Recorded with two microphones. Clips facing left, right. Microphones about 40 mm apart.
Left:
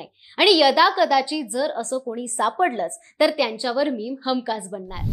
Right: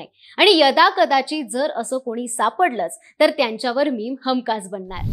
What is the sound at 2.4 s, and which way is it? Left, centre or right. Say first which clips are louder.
A woman's voice: right 2 dB; centre.